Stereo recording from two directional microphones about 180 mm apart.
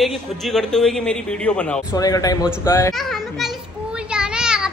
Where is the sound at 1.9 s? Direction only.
20° left (ahead or behind).